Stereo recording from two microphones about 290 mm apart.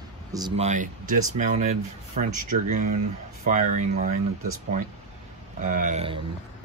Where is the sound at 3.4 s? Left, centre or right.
Right.